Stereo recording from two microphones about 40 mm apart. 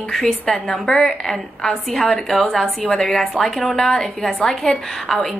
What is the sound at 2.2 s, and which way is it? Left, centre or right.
A woman's voice, centre.